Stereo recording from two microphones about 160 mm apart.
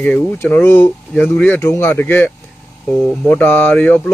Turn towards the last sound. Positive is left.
turn(degrees=10)  # may be behind; listen again after turning